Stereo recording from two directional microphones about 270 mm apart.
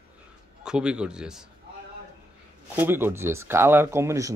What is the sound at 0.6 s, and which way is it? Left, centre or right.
Speech, centre.